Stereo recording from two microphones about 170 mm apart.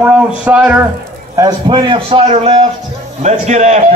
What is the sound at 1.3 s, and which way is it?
A man's voice, 25° right (ahead or behind).